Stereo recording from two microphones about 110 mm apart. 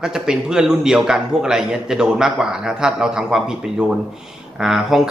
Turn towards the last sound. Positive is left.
turn(degrees=-5)  # may be behind; listen again after turning